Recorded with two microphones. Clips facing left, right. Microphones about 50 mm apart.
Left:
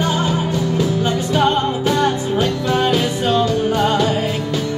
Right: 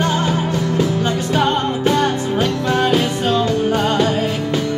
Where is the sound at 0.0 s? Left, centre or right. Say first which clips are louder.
Right 1 dB; right.